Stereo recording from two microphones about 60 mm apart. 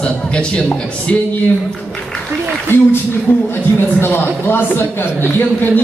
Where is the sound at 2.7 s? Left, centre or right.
Left.